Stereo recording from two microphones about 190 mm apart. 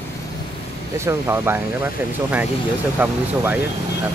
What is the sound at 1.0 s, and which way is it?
Speech, 15° right (ahead or behind).